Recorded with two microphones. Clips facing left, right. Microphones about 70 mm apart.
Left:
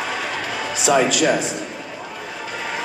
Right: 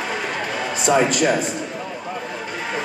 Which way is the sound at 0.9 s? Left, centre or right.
Centre.